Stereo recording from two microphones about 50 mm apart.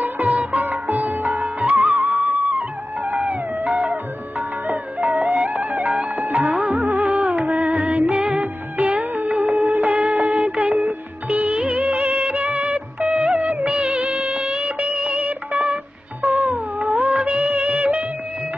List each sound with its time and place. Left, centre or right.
0.0 s music: right
13.7 s music of bollywood: right